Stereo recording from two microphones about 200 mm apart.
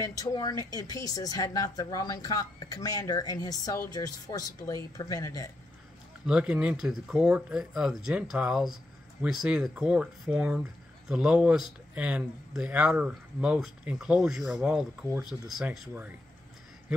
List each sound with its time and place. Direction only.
0.0 s a woman's voice: 15° left (ahead or behind)
6.2 s speech: 5° right (ahead or behind)